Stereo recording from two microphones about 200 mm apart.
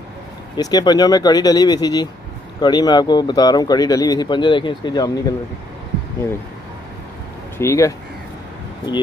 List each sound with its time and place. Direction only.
0.6 s speech: 20° left (ahead or behind)
7.5 s speech: 15° left (ahead or behind)